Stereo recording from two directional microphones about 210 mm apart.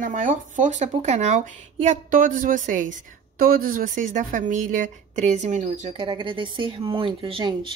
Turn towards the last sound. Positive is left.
turn(degrees=-25)  # may be behind; listen again after turning